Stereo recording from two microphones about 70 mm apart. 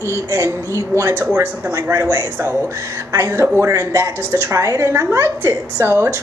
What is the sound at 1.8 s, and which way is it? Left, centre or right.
Speech, right.